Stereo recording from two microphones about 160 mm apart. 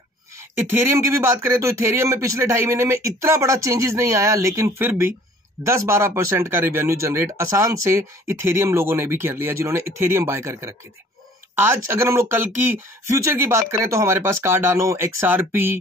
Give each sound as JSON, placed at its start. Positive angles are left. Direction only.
{"t": 0.7, "sound": "speech", "side_deg": -15}